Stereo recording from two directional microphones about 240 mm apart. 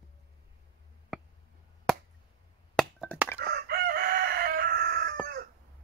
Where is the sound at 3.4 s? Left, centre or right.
Right.